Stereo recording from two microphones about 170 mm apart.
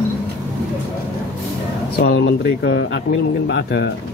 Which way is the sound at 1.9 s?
80° left.